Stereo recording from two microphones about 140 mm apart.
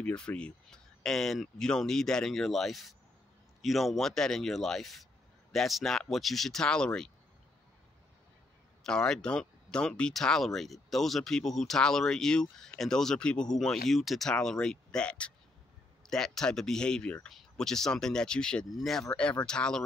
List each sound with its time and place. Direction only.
0.0 s speech: 10° left (ahead or behind)
8.8 s speech: 5° left (ahead or behind)